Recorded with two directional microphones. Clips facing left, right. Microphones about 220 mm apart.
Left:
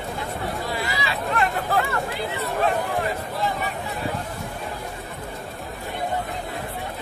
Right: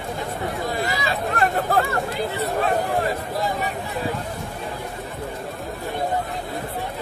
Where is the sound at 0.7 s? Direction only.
45° right (ahead or behind).